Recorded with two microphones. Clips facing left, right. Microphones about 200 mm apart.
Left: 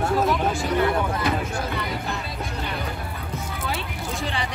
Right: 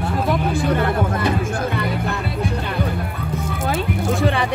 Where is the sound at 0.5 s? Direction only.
55° right (ahead or behind).